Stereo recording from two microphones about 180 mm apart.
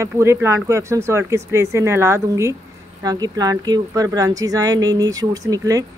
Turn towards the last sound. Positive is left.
turn(degrees=-20)  # may be behind; listen again after turning